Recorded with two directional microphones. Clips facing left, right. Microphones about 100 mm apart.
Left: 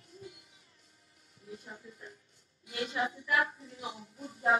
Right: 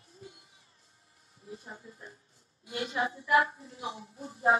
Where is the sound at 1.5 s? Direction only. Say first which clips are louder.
Right 1 dB; 35° right (ahead or behind).